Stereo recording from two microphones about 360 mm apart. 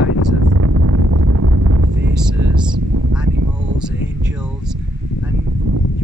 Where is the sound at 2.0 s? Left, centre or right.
Right.